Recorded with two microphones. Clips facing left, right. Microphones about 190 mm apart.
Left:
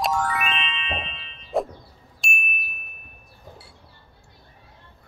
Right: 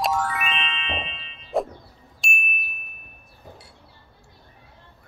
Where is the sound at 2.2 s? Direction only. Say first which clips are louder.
Even; centre (ahead or behind).